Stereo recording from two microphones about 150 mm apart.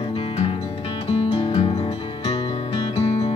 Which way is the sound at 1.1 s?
45° left (ahead or behind).